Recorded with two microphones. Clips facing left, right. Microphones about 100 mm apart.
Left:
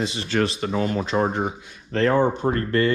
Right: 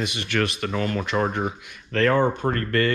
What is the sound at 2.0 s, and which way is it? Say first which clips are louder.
Speech: left 1 dB; 15° left (ahead or behind).